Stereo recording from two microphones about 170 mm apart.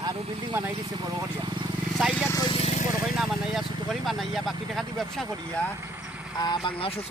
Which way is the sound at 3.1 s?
Centre (ahead or behind).